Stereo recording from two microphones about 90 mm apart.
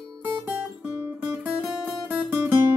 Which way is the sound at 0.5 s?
15° right (ahead or behind).